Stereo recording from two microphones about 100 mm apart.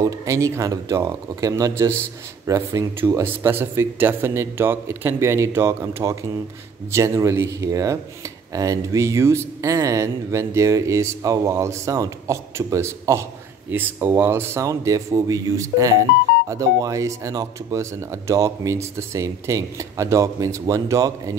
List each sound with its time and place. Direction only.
0.0 s a man's voice: 35° right (ahead or behind)